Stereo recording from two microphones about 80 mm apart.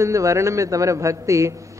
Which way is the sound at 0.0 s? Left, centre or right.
Right.